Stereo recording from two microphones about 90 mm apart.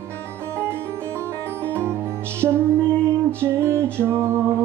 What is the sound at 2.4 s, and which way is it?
Music, 30° right (ahead or behind).